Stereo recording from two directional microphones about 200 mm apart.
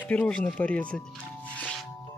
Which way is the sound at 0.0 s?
5° left (ahead or behind).